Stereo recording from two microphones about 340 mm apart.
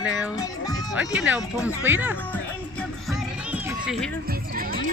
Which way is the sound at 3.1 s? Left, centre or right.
Centre.